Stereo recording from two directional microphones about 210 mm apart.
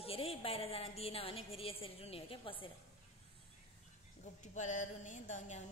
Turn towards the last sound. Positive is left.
turn(degrees=35)  # may be behind; listen again after turning